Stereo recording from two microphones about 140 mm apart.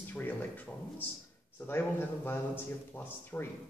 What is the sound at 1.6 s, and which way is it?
Speech, 15° left (ahead or behind).